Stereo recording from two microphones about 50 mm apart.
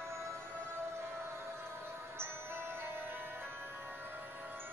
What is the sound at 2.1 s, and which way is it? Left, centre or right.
Music, right.